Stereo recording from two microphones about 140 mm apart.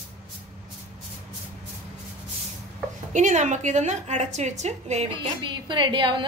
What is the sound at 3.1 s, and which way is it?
A woman's voice, 60° right (ahead or behind).